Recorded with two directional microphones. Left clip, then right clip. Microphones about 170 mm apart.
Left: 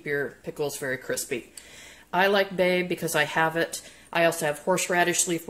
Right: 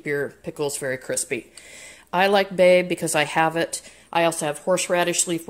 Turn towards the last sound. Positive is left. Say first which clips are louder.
# right 2 dB
turn(degrees=-35)  # may be behind; listen again after turning